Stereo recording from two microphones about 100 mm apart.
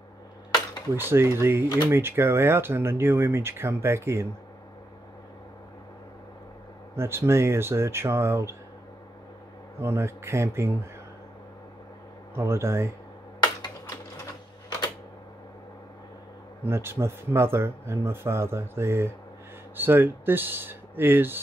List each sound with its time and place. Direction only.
0.9 s speech: 25° right (ahead or behind)
7.0 s speech: 25° right (ahead or behind)
9.8 s speech: 25° right (ahead or behind)
12.4 s speech: 25° right (ahead or behind)
16.6 s speech: 25° right (ahead or behind)